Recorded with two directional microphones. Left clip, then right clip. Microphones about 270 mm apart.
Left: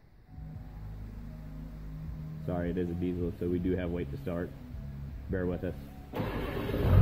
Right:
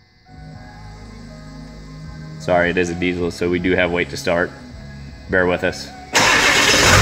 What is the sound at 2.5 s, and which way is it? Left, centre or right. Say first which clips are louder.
Speech: right 18 dB; right.